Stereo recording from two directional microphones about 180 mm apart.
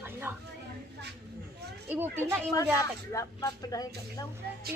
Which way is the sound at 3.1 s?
20° left (ahead or behind).